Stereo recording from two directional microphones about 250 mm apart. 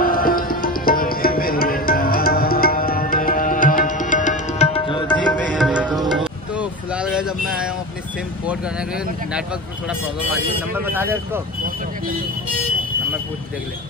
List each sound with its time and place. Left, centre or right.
0.0 s music: left
5.3 s music: centre
6.5 s vehicle: centre
10.7 s speech: centre